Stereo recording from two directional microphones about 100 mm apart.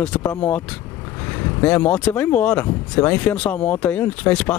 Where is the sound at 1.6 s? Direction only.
15° left (ahead or behind).